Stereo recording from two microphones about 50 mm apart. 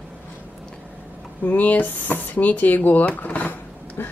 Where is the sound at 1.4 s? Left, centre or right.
Left.